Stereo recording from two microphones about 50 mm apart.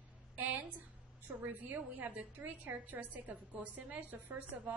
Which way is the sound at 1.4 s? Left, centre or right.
Right.